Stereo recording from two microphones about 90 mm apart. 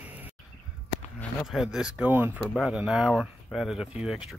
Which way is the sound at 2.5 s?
5° right (ahead or behind).